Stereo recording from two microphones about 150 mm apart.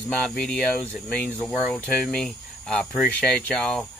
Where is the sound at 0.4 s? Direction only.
5° left (ahead or behind).